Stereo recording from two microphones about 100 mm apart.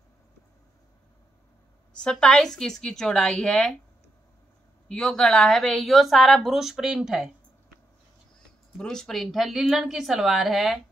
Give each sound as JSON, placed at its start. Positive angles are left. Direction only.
{"t": 2.0, "sound": "a woman's voice", "side_deg": 10}
{"t": 4.8, "sound": "a woman's voice", "side_deg": 5}
{"t": 8.7, "sound": "a woman's voice", "side_deg": 5}